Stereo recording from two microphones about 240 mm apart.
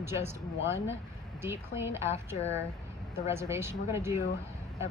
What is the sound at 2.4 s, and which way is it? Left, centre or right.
Speech, left.